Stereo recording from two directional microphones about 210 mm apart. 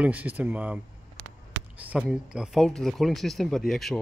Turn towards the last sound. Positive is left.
turn(degrees=0)  # may be behind; listen again after turning